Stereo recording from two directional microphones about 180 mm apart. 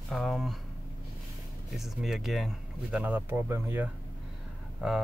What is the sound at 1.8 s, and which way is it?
Speech, centre (ahead or behind).